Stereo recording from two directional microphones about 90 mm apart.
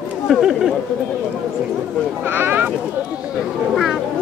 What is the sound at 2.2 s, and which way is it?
Speech, 25° right (ahead or behind).